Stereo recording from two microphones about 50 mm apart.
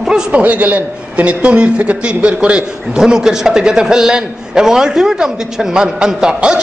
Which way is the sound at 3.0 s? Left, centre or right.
Centre.